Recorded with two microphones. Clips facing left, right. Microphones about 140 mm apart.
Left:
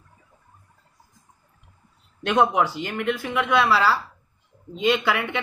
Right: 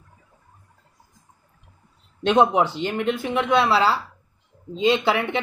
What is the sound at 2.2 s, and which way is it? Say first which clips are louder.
Speech: right 2 dB; 25° right (ahead or behind).